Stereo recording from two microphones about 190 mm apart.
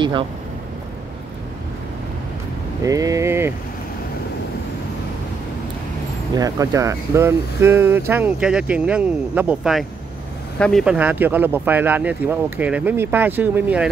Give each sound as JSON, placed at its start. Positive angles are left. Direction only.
{"t": 2.8, "sound": "speech", "side_deg": -15}
{"t": 6.3, "sound": "speech", "side_deg": -20}